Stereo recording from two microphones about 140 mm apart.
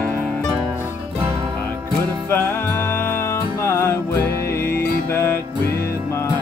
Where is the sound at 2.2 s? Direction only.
15° left (ahead or behind).